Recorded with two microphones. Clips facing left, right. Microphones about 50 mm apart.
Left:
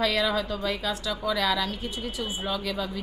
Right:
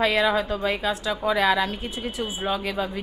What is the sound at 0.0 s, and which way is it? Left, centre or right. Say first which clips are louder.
A woman's voice: right 4 dB; right.